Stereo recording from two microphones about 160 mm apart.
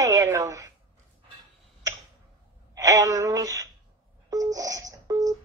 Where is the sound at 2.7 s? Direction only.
20° right (ahead or behind).